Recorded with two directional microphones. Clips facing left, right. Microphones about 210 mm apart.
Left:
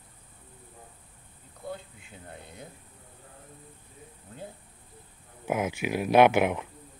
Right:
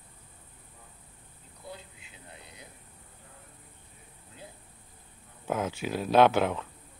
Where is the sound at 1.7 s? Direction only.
50° left (ahead or behind).